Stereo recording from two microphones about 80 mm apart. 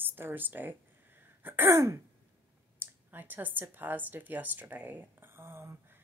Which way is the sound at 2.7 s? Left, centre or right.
Right.